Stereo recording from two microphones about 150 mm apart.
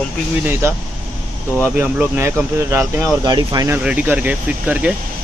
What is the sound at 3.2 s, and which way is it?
Speech, 25° right (ahead or behind).